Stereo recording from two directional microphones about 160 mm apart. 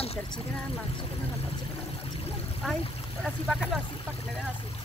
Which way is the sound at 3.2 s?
Centre (ahead or behind).